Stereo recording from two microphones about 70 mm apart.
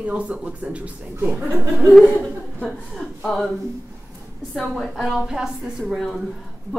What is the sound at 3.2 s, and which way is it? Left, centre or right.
Speech, centre.